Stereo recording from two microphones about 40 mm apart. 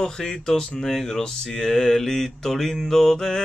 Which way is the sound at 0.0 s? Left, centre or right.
Centre.